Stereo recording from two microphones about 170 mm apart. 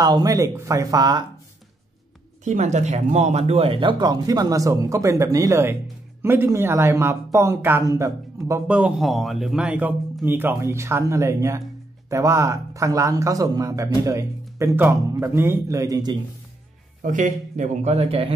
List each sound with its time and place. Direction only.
0.0 s a man's voice: 20° right (ahead or behind)
2.4 s a man's voice: 45° right (ahead or behind); by 16.2 s 20° right (ahead or behind)
17.0 s speech: 50° right (ahead or behind)